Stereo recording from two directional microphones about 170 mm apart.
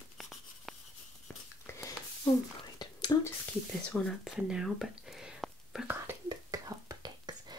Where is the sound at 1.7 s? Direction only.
20° left (ahead or behind).